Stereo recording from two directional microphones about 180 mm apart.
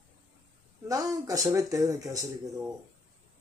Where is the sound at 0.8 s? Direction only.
20° right (ahead or behind).